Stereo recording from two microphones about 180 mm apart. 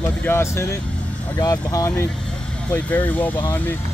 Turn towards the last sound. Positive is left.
turn(degrees=10)  # may be behind; listen again after turning